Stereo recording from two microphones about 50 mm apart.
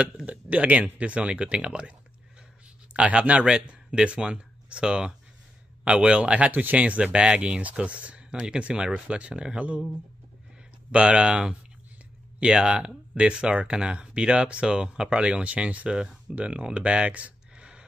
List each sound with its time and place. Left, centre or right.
0.3 s speech: right
10.9 s speech: right